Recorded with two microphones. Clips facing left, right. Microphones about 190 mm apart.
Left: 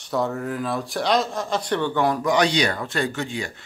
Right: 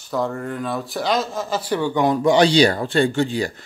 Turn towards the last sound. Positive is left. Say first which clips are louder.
# right 8 dB
turn(degrees=-35)  # may be behind; listen again after turning